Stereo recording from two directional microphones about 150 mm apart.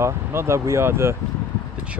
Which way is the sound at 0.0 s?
15° right (ahead or behind).